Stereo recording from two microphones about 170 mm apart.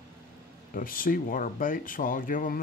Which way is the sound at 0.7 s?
55° left (ahead or behind).